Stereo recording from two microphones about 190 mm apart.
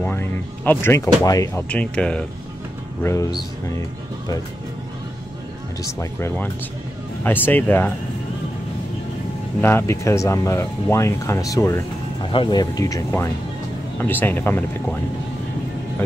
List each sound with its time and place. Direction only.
0.0 s speech: 10° left (ahead or behind)
1.7 s speech: 5° left (ahead or behind)
3.0 s speech: 15° left (ahead or behind)
5.9 s speech: 15° left (ahead or behind)
9.6 s speech: 10° left (ahead or behind)